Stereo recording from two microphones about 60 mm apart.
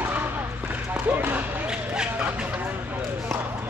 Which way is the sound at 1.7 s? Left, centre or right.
Centre.